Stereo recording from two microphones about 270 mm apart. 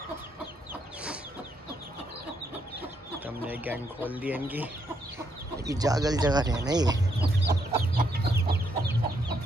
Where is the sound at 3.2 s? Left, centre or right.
Centre.